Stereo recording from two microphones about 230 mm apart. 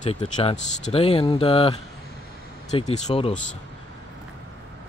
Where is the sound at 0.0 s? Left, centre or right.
Left.